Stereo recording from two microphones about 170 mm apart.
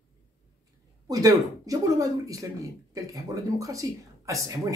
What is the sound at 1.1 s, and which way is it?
Speech, 20° right (ahead or behind).